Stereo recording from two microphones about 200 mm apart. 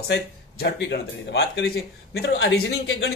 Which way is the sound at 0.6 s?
55° left (ahead or behind).